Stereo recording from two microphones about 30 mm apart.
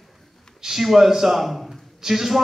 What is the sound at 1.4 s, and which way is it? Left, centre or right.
Speech, centre.